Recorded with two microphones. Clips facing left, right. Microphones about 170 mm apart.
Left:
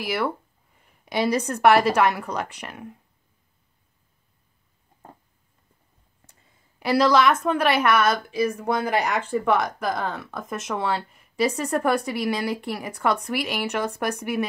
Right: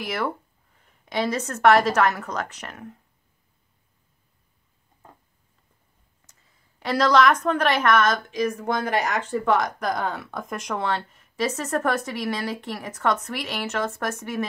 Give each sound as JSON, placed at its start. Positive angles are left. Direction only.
{"t": 0.0, "sound": "a woman's voice", "side_deg": 5}
{"t": 6.8, "sound": "a woman's voice", "side_deg": 10}